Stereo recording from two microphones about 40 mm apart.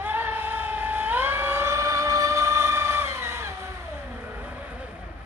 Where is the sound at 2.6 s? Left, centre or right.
Right.